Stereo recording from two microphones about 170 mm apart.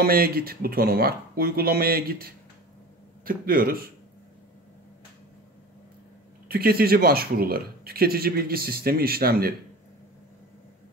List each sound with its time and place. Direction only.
0.0 s speech: 60° right (ahead or behind)
6.5 s speech: 60° right (ahead or behind)